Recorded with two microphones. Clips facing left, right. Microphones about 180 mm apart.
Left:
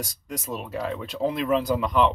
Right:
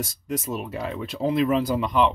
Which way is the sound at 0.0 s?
5° right (ahead or behind).